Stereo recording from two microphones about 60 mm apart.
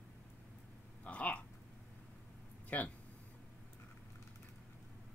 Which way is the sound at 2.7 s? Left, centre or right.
Left.